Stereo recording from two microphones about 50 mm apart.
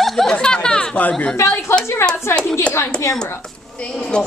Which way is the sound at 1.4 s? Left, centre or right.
Left.